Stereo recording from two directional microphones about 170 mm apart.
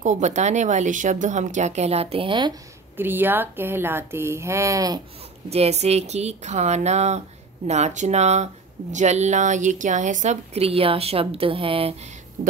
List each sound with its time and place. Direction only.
0.0 s speech: 45° right (ahead or behind); by 2.5 s 30° right (ahead or behind)
3.0 s speech: 10° right (ahead or behind)
5.5 s speech: 40° right (ahead or behind)